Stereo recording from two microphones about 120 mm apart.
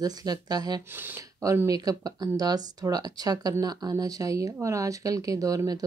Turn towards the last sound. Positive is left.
turn(degrees=-30)  # may be behind; listen again after turning